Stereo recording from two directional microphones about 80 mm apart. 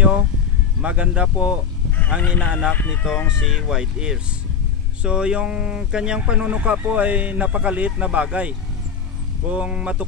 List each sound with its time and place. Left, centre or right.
0.7 s speech: centre
2.0 s speech: left
3.1 s speech: centre